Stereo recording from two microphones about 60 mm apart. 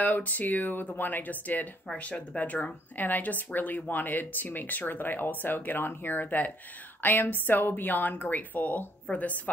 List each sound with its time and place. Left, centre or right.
0.0 s a woman's voice: left